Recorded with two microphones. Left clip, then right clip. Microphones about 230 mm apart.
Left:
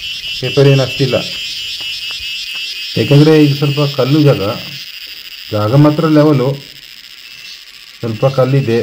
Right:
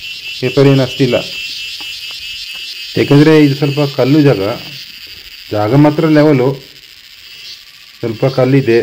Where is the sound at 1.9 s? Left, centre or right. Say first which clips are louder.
Left 3 dB; centre.